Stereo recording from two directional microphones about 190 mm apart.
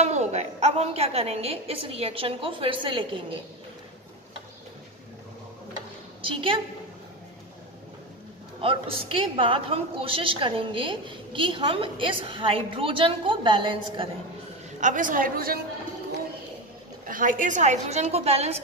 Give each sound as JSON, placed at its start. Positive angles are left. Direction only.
{"t": 0.0, "sound": "a woman's voice", "side_deg": -35}
{"t": 6.2, "sound": "a woman's voice", "side_deg": -30}
{"t": 8.5, "sound": "a woman's voice", "side_deg": -30}
{"t": 14.8, "sound": "a woman's voice", "side_deg": -45}
{"t": 17.1, "sound": "a woman's voice", "side_deg": -45}